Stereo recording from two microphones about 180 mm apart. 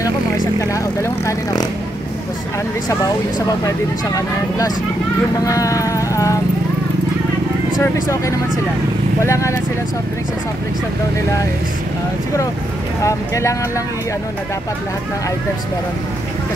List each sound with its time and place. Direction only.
0.6 s speech: 15° left (ahead or behind)
3.6 s speech: 20° left (ahead or behind)
7.8 s speech: 15° left (ahead or behind)
13.0 s speech: 15° left (ahead or behind)